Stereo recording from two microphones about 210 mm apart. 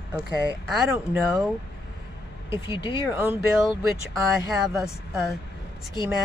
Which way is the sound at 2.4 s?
20° left (ahead or behind).